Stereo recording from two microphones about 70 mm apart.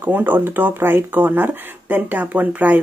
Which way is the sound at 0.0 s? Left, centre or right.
Right.